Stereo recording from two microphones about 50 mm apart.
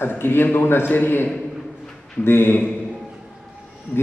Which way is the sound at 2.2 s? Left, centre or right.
Left.